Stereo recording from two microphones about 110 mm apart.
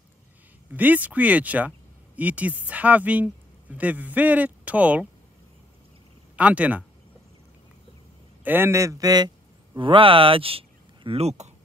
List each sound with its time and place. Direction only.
0.7 s speech: 15° right (ahead or behind)
6.3 s speech: 10° right (ahead or behind)
8.5 s speech: 20° right (ahead or behind); by 9.3 s 35° right (ahead or behind)
9.8 s speech: 50° right (ahead or behind)
11.1 s speech: 70° right (ahead or behind)